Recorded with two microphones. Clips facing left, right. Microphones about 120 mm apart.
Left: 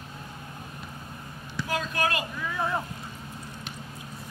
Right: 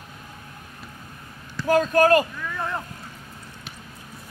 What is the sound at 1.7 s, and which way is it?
Speech, 45° right (ahead or behind).